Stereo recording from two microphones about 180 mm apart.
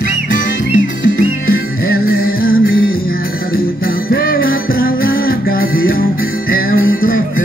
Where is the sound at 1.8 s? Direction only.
55° left (ahead or behind).